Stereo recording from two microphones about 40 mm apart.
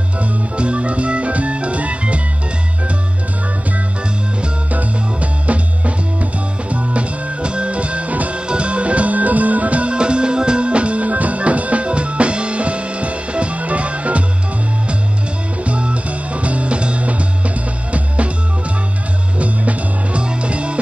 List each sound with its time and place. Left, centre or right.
0.2 s organ: right
4.7 s music: right
15.6 s music: right
19.3 s music: right